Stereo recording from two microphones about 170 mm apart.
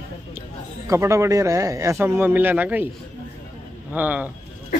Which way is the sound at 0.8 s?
15° right (ahead or behind).